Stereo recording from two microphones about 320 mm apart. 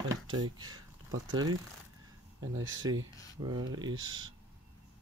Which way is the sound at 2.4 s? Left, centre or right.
Right.